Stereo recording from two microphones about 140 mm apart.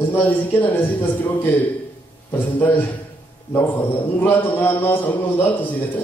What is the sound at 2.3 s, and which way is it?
Speech, 15° left (ahead or behind).